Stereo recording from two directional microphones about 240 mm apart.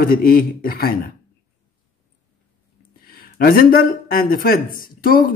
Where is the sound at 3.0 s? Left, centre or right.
Left.